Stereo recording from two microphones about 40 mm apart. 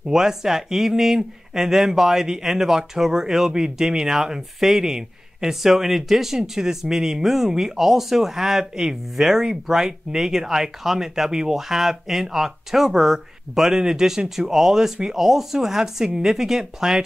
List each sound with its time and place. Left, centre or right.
0.1 s speech: centre